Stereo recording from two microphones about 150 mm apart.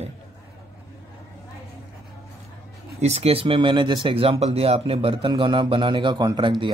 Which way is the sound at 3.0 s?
45° right (ahead or behind).